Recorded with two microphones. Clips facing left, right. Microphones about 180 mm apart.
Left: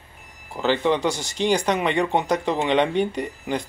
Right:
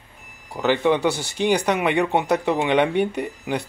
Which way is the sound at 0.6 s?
10° right (ahead or behind).